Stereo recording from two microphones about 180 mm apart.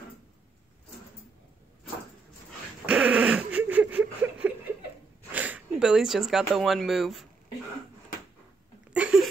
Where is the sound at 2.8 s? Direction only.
5° right (ahead or behind).